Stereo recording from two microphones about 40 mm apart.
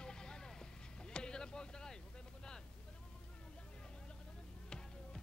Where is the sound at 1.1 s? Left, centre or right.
Centre.